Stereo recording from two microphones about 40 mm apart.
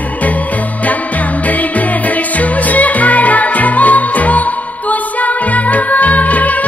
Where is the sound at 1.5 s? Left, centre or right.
Left.